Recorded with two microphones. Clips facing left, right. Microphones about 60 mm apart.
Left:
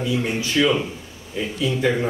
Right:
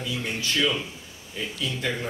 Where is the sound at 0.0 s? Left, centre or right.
Centre.